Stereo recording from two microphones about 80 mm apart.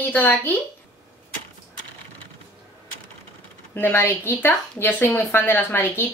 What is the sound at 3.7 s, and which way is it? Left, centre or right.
A woman's voice, left.